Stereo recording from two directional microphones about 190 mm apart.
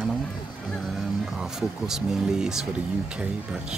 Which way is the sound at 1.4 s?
5° right (ahead or behind).